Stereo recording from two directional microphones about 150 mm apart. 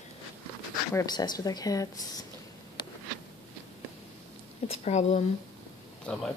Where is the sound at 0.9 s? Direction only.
25° left (ahead or behind).